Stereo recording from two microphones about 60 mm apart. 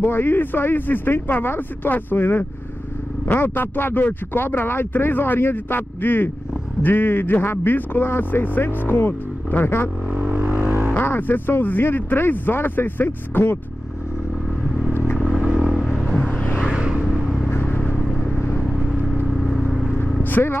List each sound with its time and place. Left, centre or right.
0.0 s speech: left
10.2 s vehicle: right
10.9 s speech: left
15.2 s vehicle: centre
17.5 s vehicle: left
19.3 s vehicle: centre
20.2 s vehicle: left